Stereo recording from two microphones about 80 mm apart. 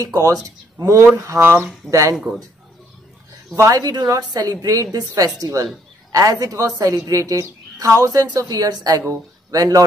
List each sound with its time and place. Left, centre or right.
0.0 s a woman's voice: right
3.7 s a woman's voice: right